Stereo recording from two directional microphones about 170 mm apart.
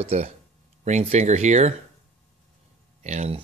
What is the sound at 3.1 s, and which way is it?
Speech, 40° right (ahead or behind).